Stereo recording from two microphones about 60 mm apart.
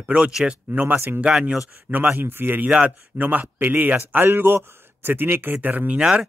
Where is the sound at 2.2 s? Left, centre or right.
Right.